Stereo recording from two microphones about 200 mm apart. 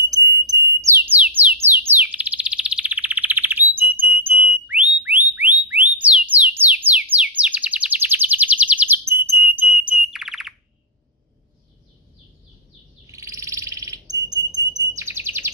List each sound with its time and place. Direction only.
0.0 s music: 15° right (ahead or behind)
4.5 s whistle: 5° right (ahead or behind)
13.0 s frog: 15° right (ahead or behind)